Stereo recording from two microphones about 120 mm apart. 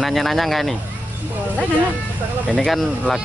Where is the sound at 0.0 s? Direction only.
Centre (ahead or behind).